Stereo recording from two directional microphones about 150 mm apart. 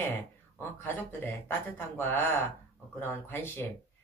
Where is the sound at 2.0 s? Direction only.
15° left (ahead or behind).